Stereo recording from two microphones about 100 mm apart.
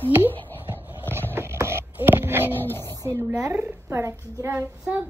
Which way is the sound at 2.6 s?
25° left (ahead or behind).